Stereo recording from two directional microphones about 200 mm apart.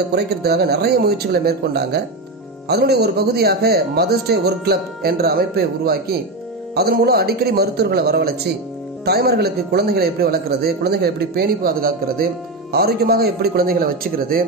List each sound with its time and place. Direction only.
0.1 s a man's voice: 55° right (ahead or behind)